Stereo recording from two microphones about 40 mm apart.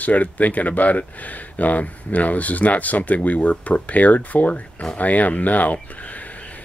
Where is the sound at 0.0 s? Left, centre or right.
Left.